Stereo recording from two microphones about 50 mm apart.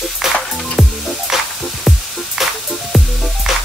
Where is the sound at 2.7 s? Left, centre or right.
Centre.